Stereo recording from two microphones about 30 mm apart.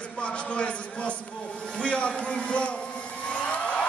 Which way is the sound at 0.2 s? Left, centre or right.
Left.